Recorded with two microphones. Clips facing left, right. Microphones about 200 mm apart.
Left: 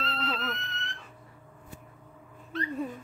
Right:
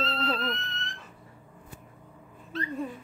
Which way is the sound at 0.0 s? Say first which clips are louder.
Right 4 dB; 30° right (ahead or behind).